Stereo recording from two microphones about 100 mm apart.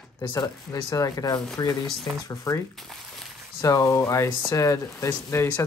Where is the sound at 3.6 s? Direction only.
30° left (ahead or behind).